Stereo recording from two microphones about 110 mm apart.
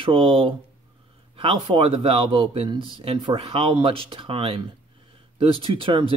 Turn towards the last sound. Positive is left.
turn(degrees=-55)  # may be behind; listen again after turning